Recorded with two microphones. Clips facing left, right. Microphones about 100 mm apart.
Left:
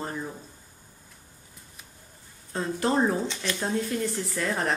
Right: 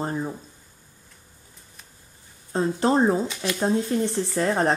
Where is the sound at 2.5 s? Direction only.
30° right (ahead or behind).